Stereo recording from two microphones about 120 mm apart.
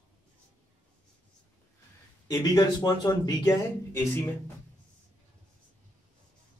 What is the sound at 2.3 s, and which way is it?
Speech, 35° left (ahead or behind).